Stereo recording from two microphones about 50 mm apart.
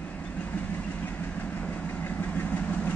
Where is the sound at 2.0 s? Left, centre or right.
Left.